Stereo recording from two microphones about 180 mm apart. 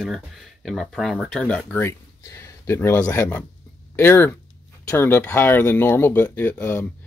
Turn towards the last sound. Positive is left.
turn(degrees=10)  # may be behind; listen again after turning